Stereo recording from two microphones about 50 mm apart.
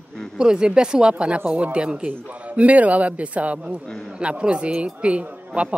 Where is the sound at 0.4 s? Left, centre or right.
Centre.